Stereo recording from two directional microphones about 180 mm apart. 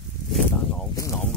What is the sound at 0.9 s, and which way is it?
Cricket, 15° left (ahead or behind).